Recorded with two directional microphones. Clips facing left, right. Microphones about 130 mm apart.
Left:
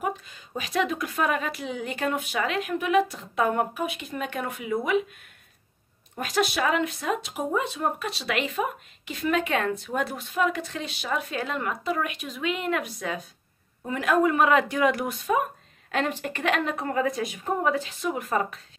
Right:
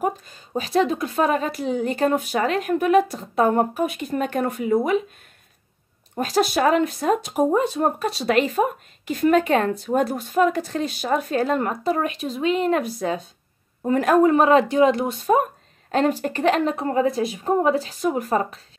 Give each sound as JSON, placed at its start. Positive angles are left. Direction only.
{"t": 0.0, "sound": "speech", "side_deg": -40}
{"t": 6.1, "sound": "speech", "side_deg": -35}